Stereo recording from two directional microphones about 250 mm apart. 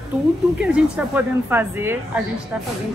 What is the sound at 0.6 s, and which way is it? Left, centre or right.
Speech, centre.